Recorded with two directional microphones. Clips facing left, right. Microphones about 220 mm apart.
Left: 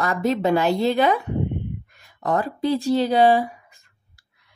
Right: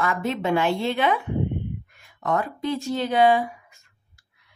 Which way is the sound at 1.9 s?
35° left (ahead or behind).